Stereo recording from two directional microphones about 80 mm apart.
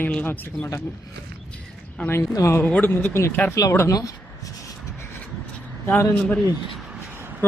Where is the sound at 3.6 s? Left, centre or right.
Left.